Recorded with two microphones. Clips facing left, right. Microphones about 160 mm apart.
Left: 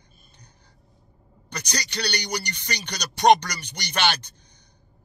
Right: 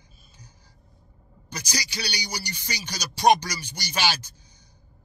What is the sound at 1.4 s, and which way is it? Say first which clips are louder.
Speech: left 1 dB; 65° left (ahead or behind).